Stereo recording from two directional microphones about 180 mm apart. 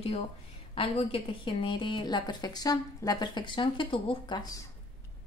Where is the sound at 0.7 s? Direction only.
30° left (ahead or behind).